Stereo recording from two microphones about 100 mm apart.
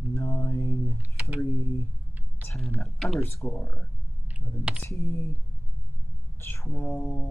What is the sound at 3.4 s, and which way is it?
Speech, 20° left (ahead or behind).